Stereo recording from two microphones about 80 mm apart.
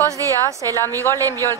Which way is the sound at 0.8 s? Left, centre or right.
Left.